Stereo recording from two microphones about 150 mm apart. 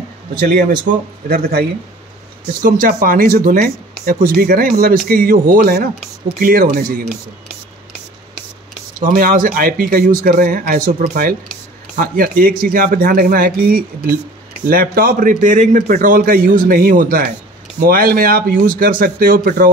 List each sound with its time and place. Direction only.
0.4 s speech: 80° right
2.6 s a man's voice: 70° right (ahead or behind)
4.0 s a man's voice: 80° right
9.0 s a man's voice: 70° right (ahead or behind)
17.7 s a man's voice: 85° right